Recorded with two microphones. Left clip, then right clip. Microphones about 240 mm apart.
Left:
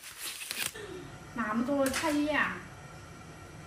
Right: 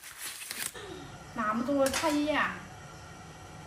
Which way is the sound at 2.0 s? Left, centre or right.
Centre.